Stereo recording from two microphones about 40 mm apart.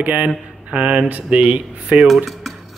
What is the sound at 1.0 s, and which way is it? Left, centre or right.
Speech, right.